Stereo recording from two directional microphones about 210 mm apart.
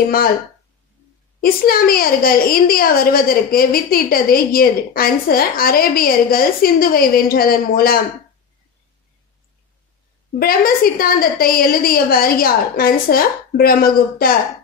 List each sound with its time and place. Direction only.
1.4 s a woman's voice: 45° left (ahead or behind)
10.4 s a woman's voice: 45° left (ahead or behind)